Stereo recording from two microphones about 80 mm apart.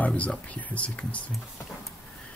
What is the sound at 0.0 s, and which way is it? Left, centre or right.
Speech, centre.